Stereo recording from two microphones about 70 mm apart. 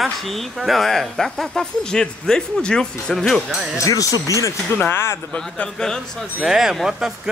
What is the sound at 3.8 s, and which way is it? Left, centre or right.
Speech, left.